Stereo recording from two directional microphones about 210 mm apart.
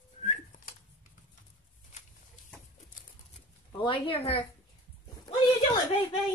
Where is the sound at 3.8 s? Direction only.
25° left (ahead or behind).